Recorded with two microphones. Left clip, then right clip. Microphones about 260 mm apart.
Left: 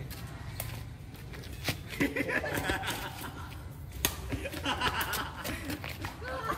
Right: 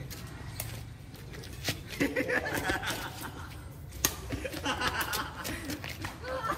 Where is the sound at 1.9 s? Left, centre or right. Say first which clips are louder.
Right 1 dB; centre.